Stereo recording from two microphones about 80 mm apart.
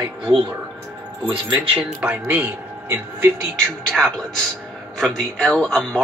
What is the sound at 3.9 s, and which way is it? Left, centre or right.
A man's voice, centre.